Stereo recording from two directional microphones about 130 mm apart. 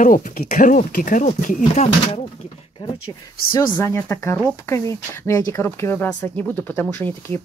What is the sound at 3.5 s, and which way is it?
Speech, 20° left (ahead or behind).